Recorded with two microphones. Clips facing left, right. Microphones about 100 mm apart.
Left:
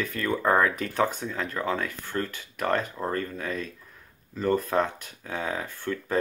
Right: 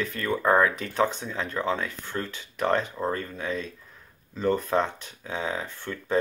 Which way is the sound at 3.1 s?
10° right (ahead or behind).